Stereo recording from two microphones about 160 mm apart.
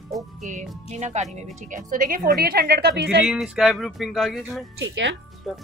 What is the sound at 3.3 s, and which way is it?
Speech, 5° right (ahead or behind).